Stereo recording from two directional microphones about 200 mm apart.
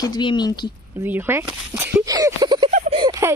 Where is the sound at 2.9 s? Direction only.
25° right (ahead or behind).